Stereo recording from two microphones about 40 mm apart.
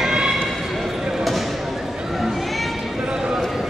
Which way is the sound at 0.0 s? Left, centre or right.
Centre.